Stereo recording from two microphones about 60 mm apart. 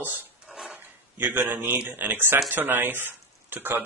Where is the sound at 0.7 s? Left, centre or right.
Right.